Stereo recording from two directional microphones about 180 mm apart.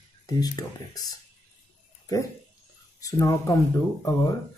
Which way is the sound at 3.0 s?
15° left (ahead or behind).